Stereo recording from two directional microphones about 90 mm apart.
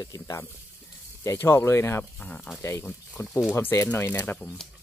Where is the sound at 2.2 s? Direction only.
15° left (ahead or behind).